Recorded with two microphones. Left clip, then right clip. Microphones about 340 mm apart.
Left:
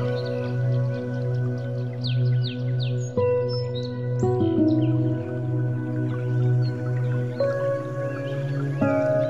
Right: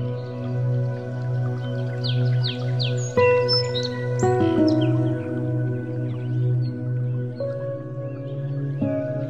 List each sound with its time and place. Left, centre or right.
3.2 s music: right
8.7 s music: left